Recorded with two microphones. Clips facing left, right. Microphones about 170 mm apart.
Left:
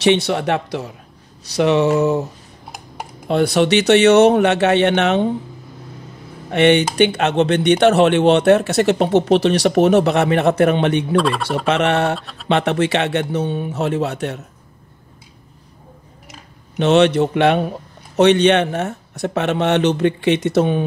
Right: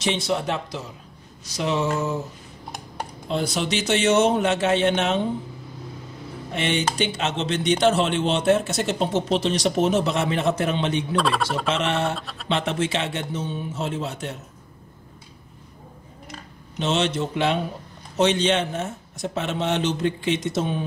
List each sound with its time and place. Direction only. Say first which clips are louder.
0.0 s a man's voice: left 8 dB; 70° left (ahead or behind)
3.3 s a man's voice: left 10 dB; 65° left (ahead or behind)
6.5 s a man's voice: left 11 dB; 65° left (ahead or behind)
11.1 s speech: left 3 dB; centre (ahead or behind)
11.4 s speech: left 7 dB; 60° left (ahead or behind)
12.2 s speech: right 1 dB; centre (ahead or behind)
12.4 s a man's voice: left 7 dB; 65° left (ahead or behind)
16.7 s speech: left 10 dB; 65° left (ahead or behind)